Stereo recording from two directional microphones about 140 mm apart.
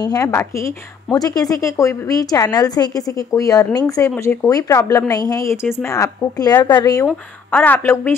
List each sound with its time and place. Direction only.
0.0 s a woman's voice: 25° left (ahead or behind)